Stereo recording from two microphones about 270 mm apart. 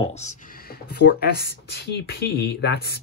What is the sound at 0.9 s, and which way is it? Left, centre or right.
Speech, left.